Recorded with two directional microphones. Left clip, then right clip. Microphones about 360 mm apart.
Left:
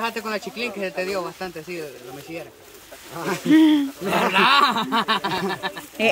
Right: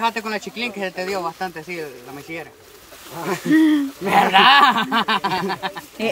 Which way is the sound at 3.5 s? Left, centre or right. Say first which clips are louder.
Even; centre.